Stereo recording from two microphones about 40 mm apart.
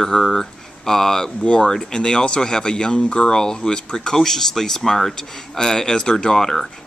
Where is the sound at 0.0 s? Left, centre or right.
Centre.